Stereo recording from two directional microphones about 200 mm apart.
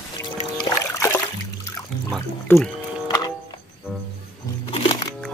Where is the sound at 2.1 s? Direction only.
5° left (ahead or behind).